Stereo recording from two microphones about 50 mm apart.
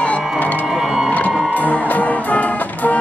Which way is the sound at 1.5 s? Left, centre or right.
Left.